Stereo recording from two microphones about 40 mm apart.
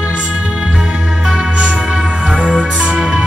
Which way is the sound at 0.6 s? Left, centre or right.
Centre.